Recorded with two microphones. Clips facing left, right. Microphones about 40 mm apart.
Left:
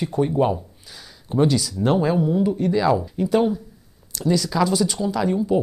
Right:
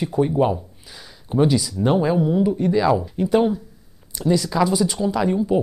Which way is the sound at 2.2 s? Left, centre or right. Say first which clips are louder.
Right 1 dB; centre.